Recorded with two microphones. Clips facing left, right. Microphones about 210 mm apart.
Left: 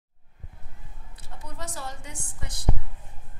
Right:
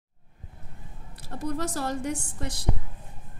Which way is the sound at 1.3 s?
70° right (ahead or behind).